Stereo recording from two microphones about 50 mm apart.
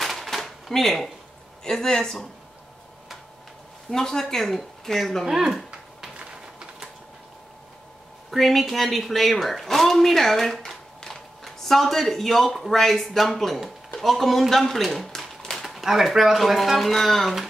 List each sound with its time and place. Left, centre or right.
0.0 s typewriter: centre
1.6 s speech: centre
3.9 s speech: centre
5.2 s speech: centre
6.1 s a sound: centre
8.3 s speech: centre